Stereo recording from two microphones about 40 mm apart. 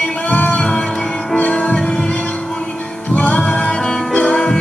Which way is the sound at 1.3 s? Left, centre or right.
Left.